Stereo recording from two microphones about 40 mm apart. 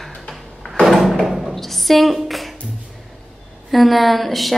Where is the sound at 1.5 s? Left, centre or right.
Centre.